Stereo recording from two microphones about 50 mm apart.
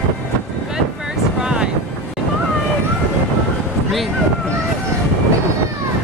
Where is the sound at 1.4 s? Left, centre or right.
Centre.